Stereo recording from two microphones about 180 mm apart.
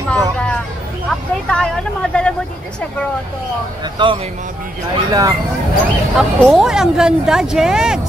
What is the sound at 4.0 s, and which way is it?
Speech, 25° right (ahead or behind).